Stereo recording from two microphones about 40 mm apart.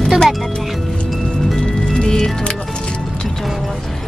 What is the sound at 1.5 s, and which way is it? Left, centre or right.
Music, left.